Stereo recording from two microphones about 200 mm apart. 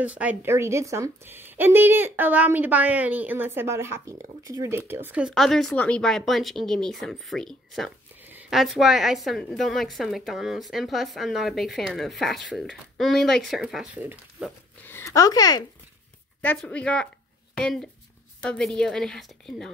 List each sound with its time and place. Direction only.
0.0 s a woman's voice: 5° right (ahead or behind)
8.2 s a woman's voice: 10° right (ahead or behind)
14.9 s speech: 15° left (ahead or behind)
16.3 s a woman's voice: 5° left (ahead or behind)